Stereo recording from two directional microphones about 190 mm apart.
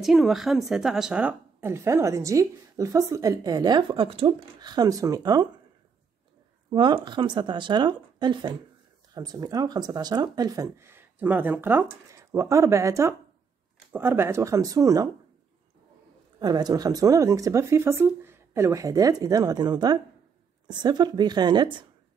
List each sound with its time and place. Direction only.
0.0 s a woman's voice: centre (ahead or behind); by 5.5 s 20° right (ahead or behind)
6.7 s a woman's voice: 25° right (ahead or behind)
16.3 s a woman's voice: 20° right (ahead or behind)